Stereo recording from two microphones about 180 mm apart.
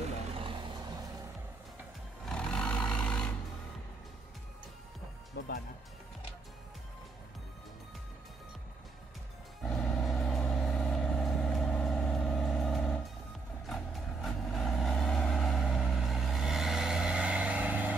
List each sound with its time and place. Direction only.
0.3 s vehicle: 30° right (ahead or behind)
2.2 s vehicle: 5° left (ahead or behind)
5.4 s music: 65° left (ahead or behind)
9.7 s vehicle: centre (ahead or behind)